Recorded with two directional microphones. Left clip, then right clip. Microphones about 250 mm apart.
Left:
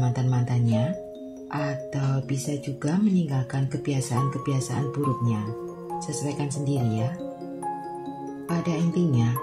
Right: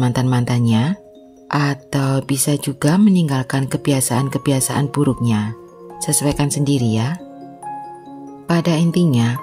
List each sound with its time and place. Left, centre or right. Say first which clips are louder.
0.0 s speech: right 10 dB; right
8.5 s speech: right 11 dB; right